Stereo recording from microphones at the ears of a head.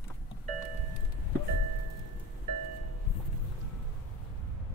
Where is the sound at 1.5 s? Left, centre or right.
Right.